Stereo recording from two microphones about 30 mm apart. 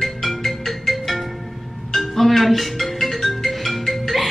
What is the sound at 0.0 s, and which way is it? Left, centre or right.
Music, centre.